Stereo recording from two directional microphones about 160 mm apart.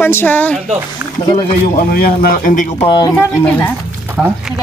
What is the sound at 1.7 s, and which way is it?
Speech, 70° left (ahead or behind).